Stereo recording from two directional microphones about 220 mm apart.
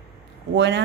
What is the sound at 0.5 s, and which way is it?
Speech, 55° right (ahead or behind).